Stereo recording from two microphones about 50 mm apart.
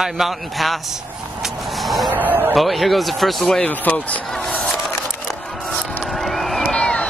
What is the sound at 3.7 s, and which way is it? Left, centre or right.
Speech, left.